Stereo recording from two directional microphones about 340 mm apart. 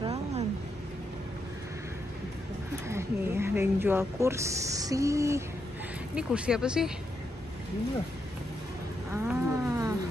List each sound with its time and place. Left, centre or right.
0.0 s a sound: centre
2.9 s speech: centre
9.1 s wild animals: centre